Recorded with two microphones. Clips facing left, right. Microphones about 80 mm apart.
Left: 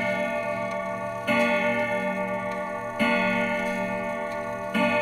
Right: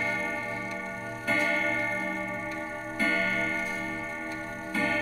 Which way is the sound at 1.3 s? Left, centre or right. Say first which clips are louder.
Left 5 dB; left.